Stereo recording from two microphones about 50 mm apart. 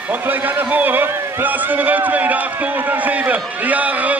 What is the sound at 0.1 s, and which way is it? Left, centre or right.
A man's voice, right.